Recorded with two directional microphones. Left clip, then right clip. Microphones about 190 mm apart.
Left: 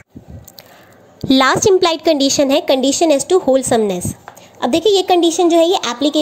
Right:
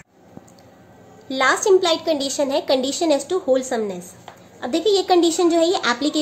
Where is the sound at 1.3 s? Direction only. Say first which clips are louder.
Left 5 dB; 55° left (ahead or behind).